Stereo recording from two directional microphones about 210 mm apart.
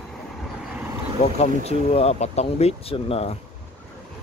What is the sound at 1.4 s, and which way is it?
Speech, 30° left (ahead or behind).